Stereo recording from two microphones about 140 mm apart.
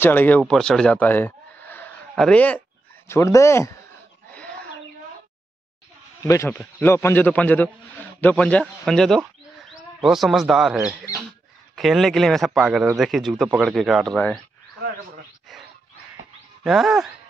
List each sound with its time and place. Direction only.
0.0 s a man's voice: 15° left (ahead or behind)
3.1 s speech: 20° left (ahead or behind)
6.2 s a man's voice: 20° left (ahead or behind); by 14.2 s centre (ahead or behind)
16.6 s speech: 5° right (ahead or behind)